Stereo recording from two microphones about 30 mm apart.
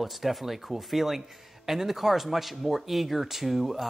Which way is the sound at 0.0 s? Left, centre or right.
Centre.